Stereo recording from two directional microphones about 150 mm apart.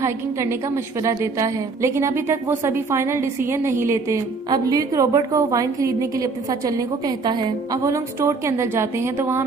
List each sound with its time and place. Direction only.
1.0 s a woman's voice: 20° right (ahead or behind)
7.2 s a woman's voice: 25° right (ahead or behind)